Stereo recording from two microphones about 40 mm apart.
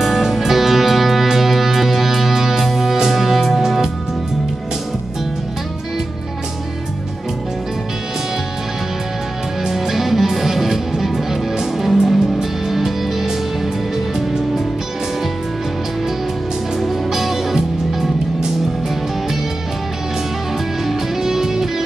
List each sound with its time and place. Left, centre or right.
0.0 s music: centre
9.7 s music: centre
12.4 s music: centre
16.8 s music: centre
20.8 s music: centre